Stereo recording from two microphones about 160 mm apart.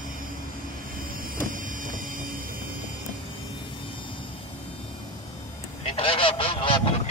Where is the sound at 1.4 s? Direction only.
55° right (ahead or behind).